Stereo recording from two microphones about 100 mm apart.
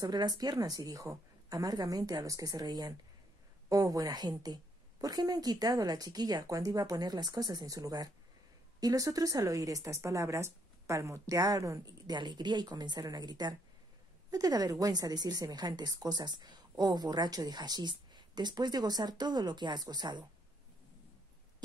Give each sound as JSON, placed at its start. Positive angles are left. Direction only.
{"t": 0.0, "sound": "a woman's voice", "side_deg": -45}